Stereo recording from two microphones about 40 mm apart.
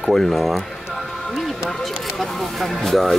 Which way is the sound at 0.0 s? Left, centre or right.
Centre.